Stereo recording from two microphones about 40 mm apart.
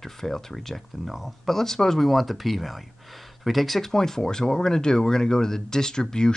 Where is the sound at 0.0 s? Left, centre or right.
Centre.